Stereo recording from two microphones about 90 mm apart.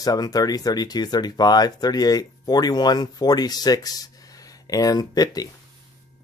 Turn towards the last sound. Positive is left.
turn(degrees=45)  # may be behind; listen again after turning